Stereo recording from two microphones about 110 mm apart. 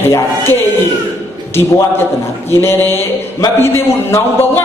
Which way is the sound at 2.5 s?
20° left (ahead or behind).